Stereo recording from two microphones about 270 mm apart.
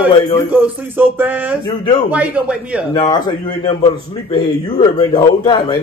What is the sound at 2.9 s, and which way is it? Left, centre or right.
A man's voice, centre.